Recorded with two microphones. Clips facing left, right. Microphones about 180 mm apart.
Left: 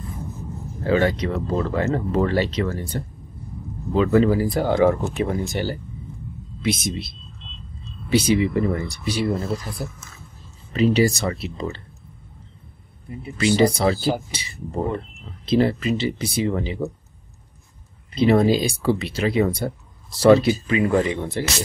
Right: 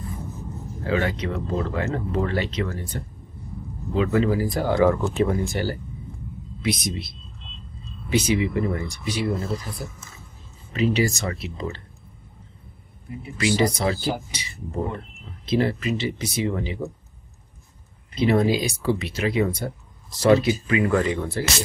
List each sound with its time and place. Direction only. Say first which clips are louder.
0.8 s speech: left 5 dB; 35° left (ahead or behind)
3.9 s speech: left 4 dB; 35° left (ahead or behind)
10.7 s speech: left 4 dB; 35° left (ahead or behind)
13.4 s speech: left 4 dB; 30° left (ahead or behind)
18.1 s speech: left 3 dB; 30° left (ahead or behind)